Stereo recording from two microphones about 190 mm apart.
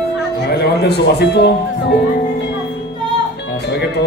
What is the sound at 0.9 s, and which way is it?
Speech, 60° left (ahead or behind).